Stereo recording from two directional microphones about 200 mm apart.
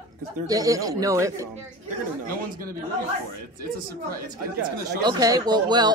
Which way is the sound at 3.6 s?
45° right (ahead or behind).